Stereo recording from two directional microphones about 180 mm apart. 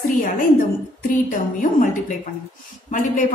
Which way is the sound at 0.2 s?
50° left (ahead or behind).